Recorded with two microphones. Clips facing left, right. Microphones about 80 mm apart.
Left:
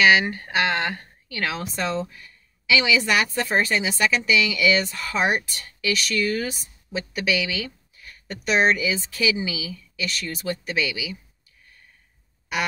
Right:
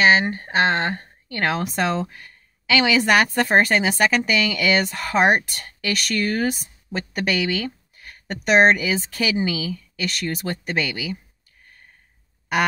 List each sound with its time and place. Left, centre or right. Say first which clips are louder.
0.0 s speech: right 1 dB; right
1.4 s a woman's voice: right 5 dB; right